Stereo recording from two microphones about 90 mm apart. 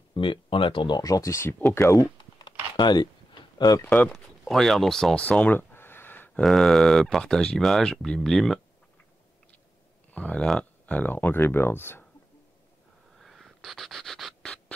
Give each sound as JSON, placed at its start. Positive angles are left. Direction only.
{"t": 0.1, "sound": "speech", "side_deg": 75}
{"t": 0.9, "sound": "speech", "side_deg": 40}
{"t": 2.7, "sound": "speech", "side_deg": 55}
{"t": 3.8, "sound": "speech", "side_deg": 20}
{"t": 4.1, "sound": "speech", "side_deg": 5}
{"t": 6.4, "sound": "speech", "side_deg": 5}
{"t": 10.1, "sound": "speech", "side_deg": 15}
{"t": 13.2, "sound": "a sound", "side_deg": 0}